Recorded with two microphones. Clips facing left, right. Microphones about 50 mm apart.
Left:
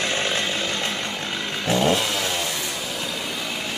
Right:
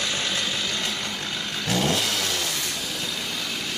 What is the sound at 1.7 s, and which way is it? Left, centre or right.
Vehicle, left.